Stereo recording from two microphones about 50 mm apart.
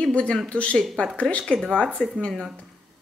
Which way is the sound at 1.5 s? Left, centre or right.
Centre.